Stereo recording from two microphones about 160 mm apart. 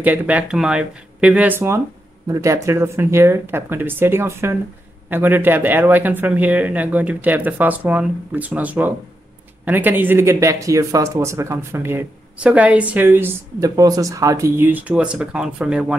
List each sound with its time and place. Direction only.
0.0 s speech: 10° right (ahead or behind)